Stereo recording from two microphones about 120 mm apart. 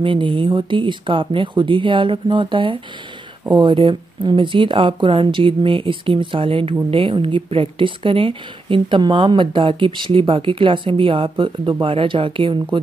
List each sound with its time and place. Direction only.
0.0 s speech: 45° right (ahead or behind)